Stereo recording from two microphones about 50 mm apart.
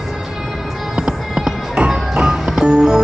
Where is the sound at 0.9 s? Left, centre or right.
Right.